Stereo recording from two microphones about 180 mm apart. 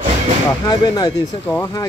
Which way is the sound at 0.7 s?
20° left (ahead or behind).